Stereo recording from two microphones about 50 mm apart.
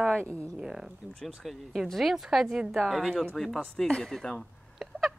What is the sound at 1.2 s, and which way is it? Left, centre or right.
A woman's voice, centre.